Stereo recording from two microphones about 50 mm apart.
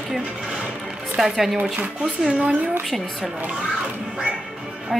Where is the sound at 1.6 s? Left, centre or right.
Right.